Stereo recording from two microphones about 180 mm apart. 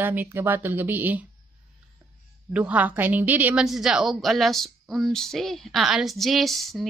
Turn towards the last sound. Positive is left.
turn(degrees=0)  # may be behind; listen again after turning